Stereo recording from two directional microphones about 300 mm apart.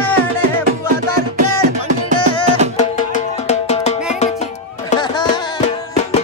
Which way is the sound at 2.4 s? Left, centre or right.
Right.